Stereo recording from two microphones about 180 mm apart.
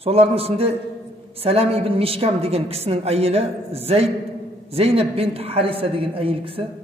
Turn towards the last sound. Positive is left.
turn(degrees=-30)  # may be behind; listen again after turning